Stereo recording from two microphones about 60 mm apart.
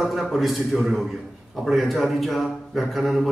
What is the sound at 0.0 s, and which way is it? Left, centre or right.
Speech, centre.